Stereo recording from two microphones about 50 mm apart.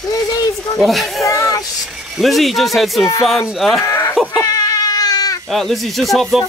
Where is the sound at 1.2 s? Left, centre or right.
Left.